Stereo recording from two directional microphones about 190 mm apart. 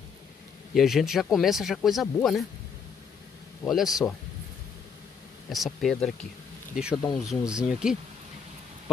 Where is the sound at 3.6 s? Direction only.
Centre (ahead or behind).